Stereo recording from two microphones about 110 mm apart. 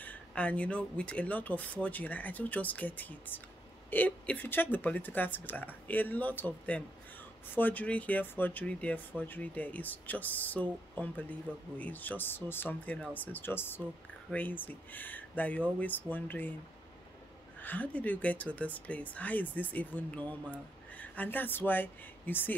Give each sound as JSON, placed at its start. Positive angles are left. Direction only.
{"t": 0.0, "sound": "speech", "side_deg": 10}
{"t": 17.6, "sound": "speech", "side_deg": 15}